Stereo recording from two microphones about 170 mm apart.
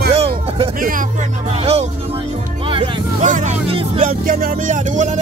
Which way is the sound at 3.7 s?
45° right (ahead or behind).